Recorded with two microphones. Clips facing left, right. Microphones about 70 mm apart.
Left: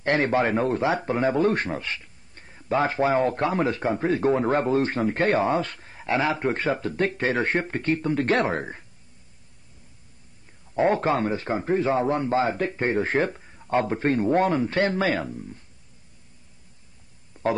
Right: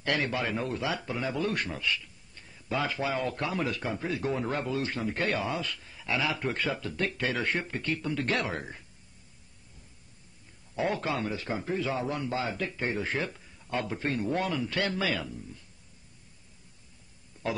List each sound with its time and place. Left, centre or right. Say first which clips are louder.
0.0 s a man's voice: left 8 dB; left
10.7 s a man's voice: left 9 dB; left
17.3 s a sound: left 8 dB; left